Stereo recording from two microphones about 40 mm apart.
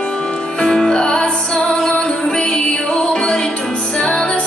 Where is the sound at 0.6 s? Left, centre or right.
Centre.